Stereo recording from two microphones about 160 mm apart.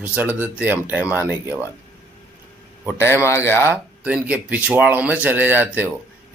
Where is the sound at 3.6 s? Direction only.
10° right (ahead or behind).